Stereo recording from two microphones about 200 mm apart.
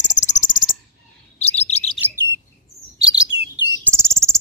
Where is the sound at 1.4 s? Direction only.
30° left (ahead or behind).